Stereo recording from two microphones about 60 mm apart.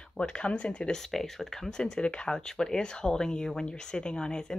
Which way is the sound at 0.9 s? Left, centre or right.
Centre.